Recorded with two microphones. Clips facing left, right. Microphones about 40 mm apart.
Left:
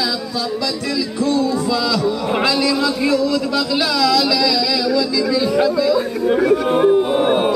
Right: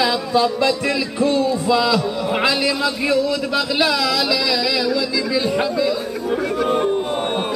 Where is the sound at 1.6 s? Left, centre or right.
Right.